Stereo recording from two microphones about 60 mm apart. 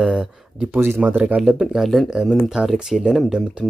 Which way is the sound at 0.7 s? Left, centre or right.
Right.